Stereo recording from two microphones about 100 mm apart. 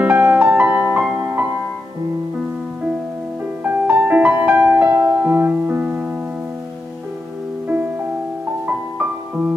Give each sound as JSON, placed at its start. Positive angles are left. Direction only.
{"t": 0.0, "sound": "music", "side_deg": -15}
{"t": 3.6, "sound": "music", "side_deg": -15}
{"t": 7.6, "sound": "music", "side_deg": -15}